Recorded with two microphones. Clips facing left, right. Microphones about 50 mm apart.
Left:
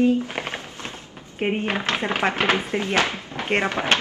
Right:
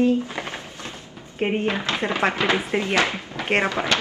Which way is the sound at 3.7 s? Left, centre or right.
Left.